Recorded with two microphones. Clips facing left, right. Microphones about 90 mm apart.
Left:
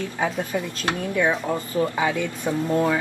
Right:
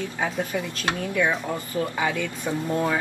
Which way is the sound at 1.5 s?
20° left (ahead or behind).